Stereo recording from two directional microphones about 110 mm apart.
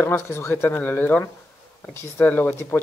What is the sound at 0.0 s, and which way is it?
Speech, 25° left (ahead or behind).